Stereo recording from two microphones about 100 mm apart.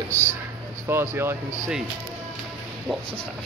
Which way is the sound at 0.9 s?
25° right (ahead or behind).